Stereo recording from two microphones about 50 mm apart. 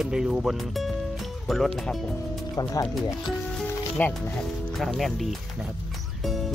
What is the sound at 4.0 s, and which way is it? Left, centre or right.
Speech, left.